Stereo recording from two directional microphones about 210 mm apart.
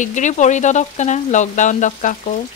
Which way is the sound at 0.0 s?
35° left (ahead or behind).